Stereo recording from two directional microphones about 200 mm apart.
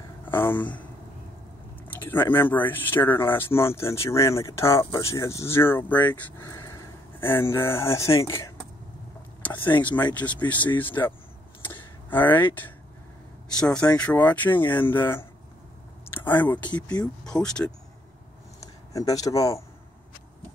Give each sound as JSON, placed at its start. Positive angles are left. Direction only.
{"t": 0.2, "sound": "speech", "side_deg": 10}
{"t": 2.0, "sound": "a sound", "side_deg": 10}
{"t": 2.3, "sound": "speech", "side_deg": 10}
{"t": 9.4, "sound": "vehicle", "side_deg": 10}
{"t": 10.2, "sound": "speech", "side_deg": 10}
{"t": 13.6, "sound": "speech", "side_deg": 5}
{"t": 17.2, "sound": "speech", "side_deg": 5}
{"t": 18.6, "sound": "speech", "side_deg": 15}